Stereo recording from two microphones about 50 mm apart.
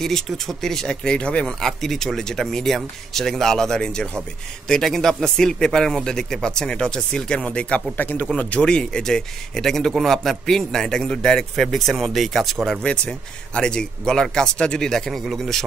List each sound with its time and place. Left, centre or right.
0.0 s speech: centre
1.4 s speech: centre
8.0 s speech: left
8.4 s speech: left; by 12.5 s centre
12.8 s a man's voice: centre